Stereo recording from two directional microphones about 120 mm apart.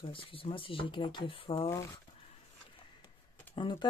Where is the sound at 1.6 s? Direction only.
25° left (ahead or behind).